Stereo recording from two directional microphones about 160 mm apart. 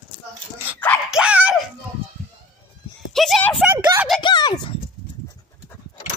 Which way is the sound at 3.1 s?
Centre (ahead or behind).